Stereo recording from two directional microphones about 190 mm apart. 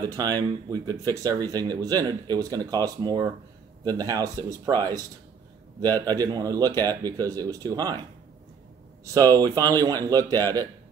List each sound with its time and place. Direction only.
0.0 s speech: 20° right (ahead or behind)
6.0 s speech: 20° right (ahead or behind)
9.4 s speech: 20° right (ahead or behind)